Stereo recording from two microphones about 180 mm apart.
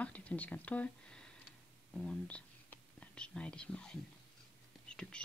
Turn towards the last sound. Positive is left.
turn(degrees=5)  # may be behind; listen again after turning